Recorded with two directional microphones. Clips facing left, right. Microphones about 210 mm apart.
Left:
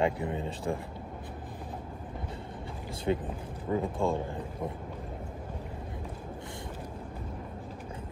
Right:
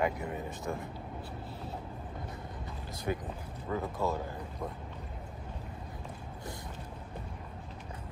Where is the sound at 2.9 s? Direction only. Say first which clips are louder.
Left 5 dB; 25° left (ahead or behind).